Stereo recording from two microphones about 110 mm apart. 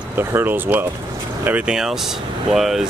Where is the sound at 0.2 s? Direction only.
20° right (ahead or behind).